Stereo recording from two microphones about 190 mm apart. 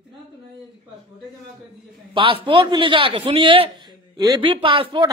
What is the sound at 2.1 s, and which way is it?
Speech, 25° right (ahead or behind).